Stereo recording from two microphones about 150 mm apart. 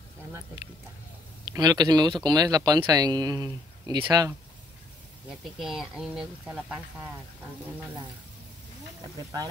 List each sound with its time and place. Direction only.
1.5 s speech: 25° right (ahead or behind)
5.4 s speech: centre (ahead or behind)